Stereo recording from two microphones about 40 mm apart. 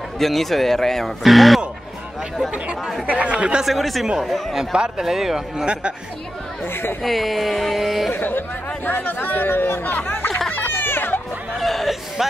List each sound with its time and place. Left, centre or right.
0.2 s speech: centre
1.2 s speech: centre
3.3 s speech: right
3.6 s speech: centre
4.7 s speech: right
5.0 s speech: centre
6.7 s speech: left
7.0 s speech: centre
8.2 s speech: left
10.1 s a sound: left
11.5 s a sound: centre